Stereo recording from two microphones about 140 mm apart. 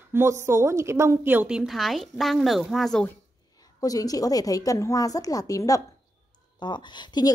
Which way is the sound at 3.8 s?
25° left (ahead or behind).